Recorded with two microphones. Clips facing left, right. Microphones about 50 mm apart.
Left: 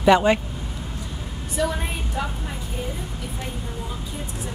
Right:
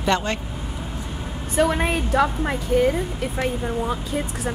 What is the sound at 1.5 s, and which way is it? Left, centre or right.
A woman's voice, right.